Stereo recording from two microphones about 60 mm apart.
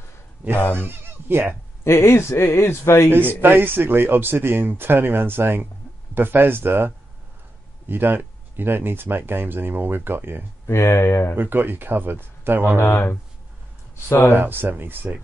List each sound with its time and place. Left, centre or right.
0.6 s speech: left
0.8 s speech: right
1.9 s speech: left
3.3 s speech: right
7.9 s speech: right
10.7 s speech: left
11.3 s speech: right
12.7 s speech: left
14.3 s speech: right